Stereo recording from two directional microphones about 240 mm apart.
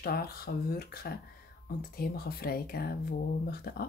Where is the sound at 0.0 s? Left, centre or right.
Left.